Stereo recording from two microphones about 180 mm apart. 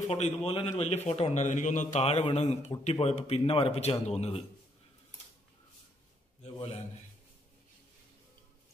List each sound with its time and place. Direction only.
0.1 s a man's voice: 35° left (ahead or behind)